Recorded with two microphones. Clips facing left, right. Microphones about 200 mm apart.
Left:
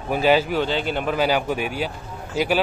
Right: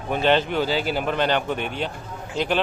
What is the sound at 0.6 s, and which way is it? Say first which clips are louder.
Speech: even; 5° right (ahead or behind).